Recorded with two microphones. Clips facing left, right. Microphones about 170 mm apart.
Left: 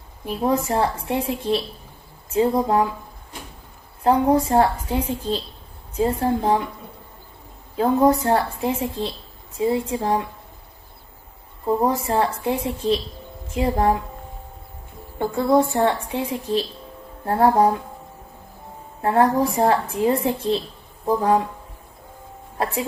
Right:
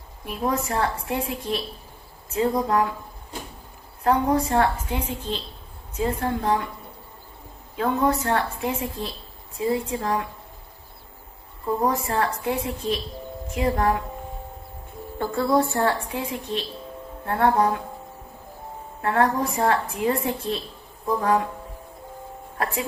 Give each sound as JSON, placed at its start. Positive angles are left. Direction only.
{"t": 0.2, "sound": "a woman's voice", "side_deg": 30}
{"t": 4.0, "sound": "a woman's voice", "side_deg": 30}
{"t": 7.7, "sound": "a woman's voice", "side_deg": 35}
{"t": 11.6, "sound": "a woman's voice", "side_deg": 30}
{"t": 15.1, "sound": "a woman's voice", "side_deg": 20}
{"t": 18.9, "sound": "a woman's voice", "side_deg": 30}